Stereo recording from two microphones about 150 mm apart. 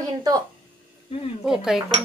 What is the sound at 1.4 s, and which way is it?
Speech, 5° right (ahead or behind).